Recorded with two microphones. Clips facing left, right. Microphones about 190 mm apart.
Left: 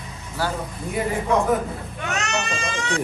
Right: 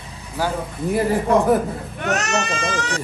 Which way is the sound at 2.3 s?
60° right (ahead or behind).